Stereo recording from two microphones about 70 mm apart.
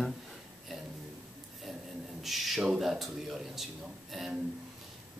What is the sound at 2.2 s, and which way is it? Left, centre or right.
Speech, centre.